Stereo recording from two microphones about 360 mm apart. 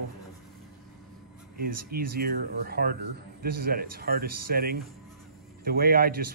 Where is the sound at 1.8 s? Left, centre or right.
Right.